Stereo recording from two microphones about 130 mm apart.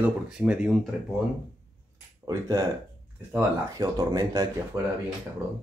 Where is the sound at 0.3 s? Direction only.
5° right (ahead or behind).